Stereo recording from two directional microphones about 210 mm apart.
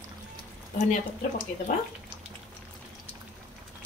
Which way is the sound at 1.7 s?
40° left (ahead or behind).